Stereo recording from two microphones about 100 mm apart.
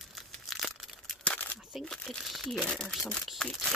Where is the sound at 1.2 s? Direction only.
20° left (ahead or behind).